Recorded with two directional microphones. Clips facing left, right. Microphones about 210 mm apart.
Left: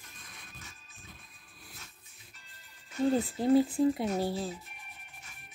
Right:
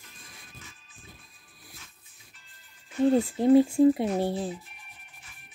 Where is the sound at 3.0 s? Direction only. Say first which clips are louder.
Right 5 dB; 25° right (ahead or behind).